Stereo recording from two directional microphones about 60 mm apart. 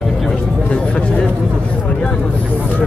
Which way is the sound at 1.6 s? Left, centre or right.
Centre.